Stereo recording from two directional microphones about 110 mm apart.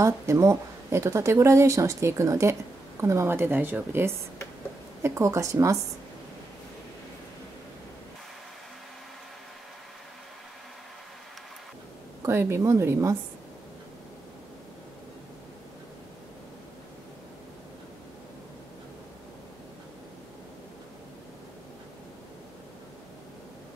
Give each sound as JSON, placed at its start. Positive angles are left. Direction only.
{"t": 0.0, "sound": "speech", "side_deg": -25}
{"t": 12.2, "sound": "speech", "side_deg": -25}